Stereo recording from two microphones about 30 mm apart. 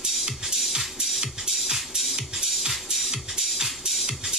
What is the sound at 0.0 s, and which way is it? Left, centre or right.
Music, right.